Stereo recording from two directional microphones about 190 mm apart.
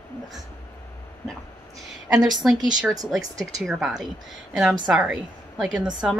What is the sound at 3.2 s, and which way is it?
Speech, 20° right (ahead or behind).